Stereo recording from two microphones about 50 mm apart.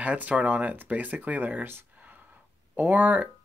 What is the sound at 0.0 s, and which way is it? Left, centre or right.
Speech, right.